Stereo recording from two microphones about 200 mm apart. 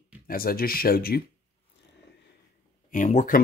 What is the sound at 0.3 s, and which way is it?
Speech, 45° left (ahead or behind).